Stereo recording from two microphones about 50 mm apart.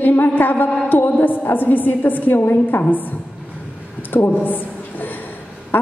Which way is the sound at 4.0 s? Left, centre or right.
Left.